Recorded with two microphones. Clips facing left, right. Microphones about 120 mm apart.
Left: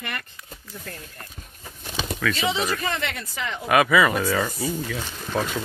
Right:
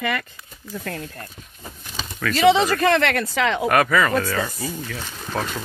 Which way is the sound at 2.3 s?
70° right (ahead or behind).